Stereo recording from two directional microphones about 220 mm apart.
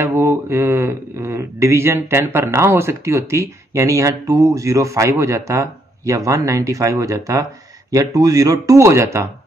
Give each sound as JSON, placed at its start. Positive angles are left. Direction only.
{"t": 0.0, "sound": "speech", "side_deg": -10}